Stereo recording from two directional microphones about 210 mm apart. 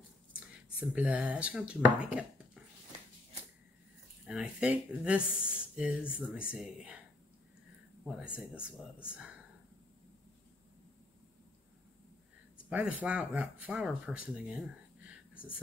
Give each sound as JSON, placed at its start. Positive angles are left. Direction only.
{"t": 0.3, "sound": "speech", "side_deg": -5}
{"t": 4.3, "sound": "speech", "side_deg": -5}
{"t": 8.0, "sound": "speech", "side_deg": -5}
{"t": 12.6, "sound": "speech", "side_deg": -5}